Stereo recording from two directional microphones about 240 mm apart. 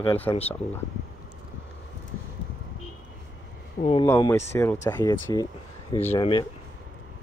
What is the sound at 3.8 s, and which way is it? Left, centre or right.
Speech, left.